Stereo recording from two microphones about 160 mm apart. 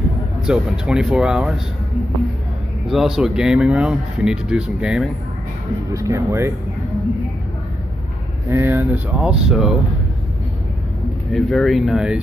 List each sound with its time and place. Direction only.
0.5 s speech: 5° right (ahead or behind)
2.9 s speech: centre (ahead or behind)
5.9 s speech: 20° right (ahead or behind)
8.5 s speech: 15° right (ahead or behind)
11.3 s speech: centre (ahead or behind)